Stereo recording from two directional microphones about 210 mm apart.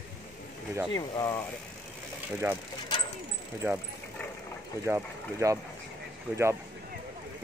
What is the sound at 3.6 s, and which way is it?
Speech, 10° right (ahead or behind).